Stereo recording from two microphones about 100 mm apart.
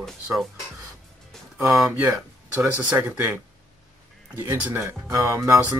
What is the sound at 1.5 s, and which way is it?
Speech, 5° right (ahead or behind).